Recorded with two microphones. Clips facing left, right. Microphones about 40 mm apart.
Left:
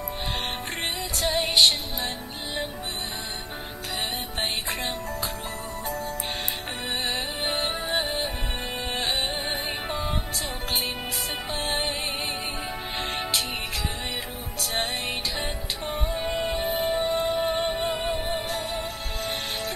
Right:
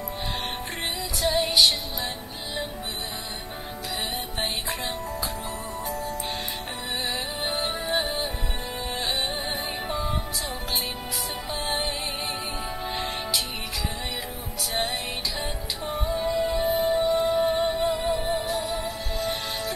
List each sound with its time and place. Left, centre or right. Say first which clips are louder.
1.2 s music: even; left
5.9 s music: left 1 dB; left
7.4 s music: even; left
9.0 s music: even; left
12.9 s music: left 1 dB; left
15.3 s music: left 1 dB; left
16.3 s music: right 4 dB; left